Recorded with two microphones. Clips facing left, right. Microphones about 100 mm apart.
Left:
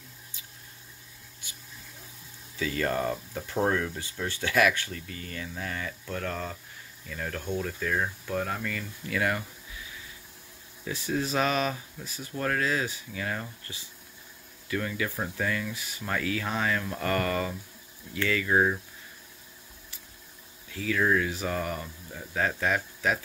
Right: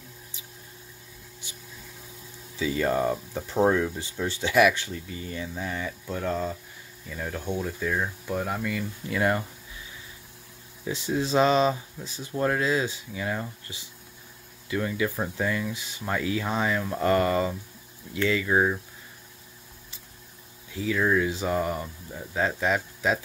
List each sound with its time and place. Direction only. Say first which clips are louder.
2.6 s speech: right 4 dB; 15° right (ahead or behind)
9.1 s speech: right 4 dB; 25° right (ahead or behind)
10.9 s speech: right 3 dB; 20° right (ahead or behind)
20.7 s speech: right 2 dB; 20° right (ahead or behind)